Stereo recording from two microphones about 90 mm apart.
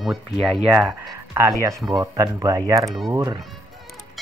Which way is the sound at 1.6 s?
40° right (ahead or behind).